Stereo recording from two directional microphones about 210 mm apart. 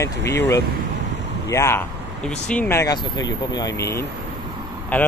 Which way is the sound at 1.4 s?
15° left (ahead or behind).